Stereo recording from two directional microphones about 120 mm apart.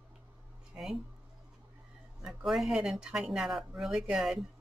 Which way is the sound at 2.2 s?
Centre (ahead or behind).